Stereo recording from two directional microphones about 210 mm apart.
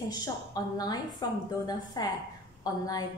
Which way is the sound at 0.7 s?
20° left (ahead or behind).